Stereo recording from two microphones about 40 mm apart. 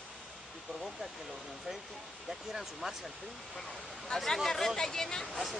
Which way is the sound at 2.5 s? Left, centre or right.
Centre.